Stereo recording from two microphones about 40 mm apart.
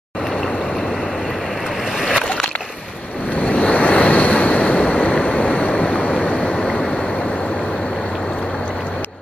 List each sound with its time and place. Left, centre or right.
2.0 s boat: centre
3.3 s vehicle: left
6.6 s vehicle: centre